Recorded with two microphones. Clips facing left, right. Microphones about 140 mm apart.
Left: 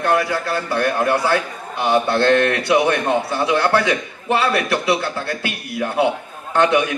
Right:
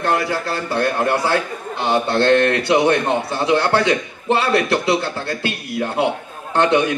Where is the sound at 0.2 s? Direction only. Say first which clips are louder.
Left 1 dB; 25° right (ahead or behind).